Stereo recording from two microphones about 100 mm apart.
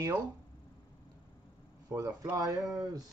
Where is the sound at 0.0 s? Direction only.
40° right (ahead or behind).